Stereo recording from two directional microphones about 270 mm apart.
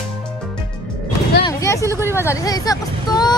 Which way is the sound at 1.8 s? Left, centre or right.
Centre.